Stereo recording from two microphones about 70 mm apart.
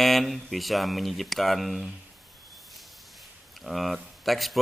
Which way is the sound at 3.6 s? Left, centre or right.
Centre.